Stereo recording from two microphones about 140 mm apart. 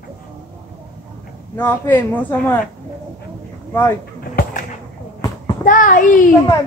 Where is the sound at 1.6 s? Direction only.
10° left (ahead or behind).